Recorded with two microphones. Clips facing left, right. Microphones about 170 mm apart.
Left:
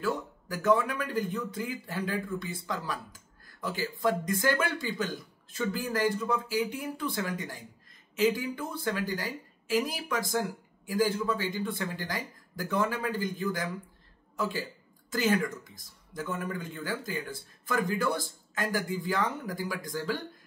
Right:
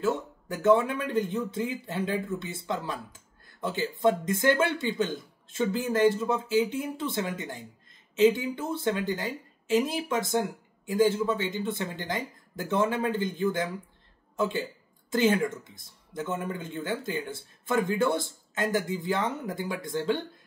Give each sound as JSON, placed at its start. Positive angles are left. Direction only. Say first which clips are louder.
{"t": 0.0, "sound": "speech", "louder": "right 3 dB", "side_deg": -25}